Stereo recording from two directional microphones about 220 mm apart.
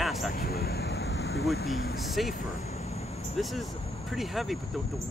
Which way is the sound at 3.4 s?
Centre (ahead or behind).